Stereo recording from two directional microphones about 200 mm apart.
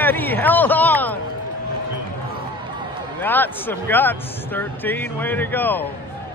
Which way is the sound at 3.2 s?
10° left (ahead or behind).